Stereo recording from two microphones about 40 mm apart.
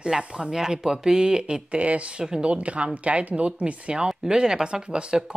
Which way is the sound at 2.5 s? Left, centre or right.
Right.